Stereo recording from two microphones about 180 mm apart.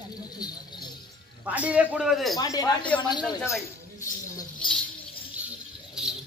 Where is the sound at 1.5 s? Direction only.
10° right (ahead or behind).